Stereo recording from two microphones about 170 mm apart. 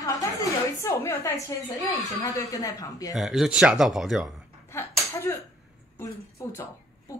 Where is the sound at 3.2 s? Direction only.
Centre (ahead or behind).